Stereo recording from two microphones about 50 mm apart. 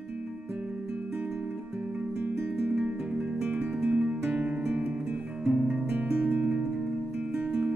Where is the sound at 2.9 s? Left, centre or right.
Right.